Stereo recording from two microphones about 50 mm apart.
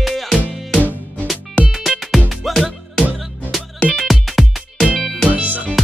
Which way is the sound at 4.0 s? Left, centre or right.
Centre.